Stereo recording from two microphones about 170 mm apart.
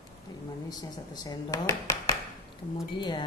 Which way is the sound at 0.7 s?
25° left (ahead or behind).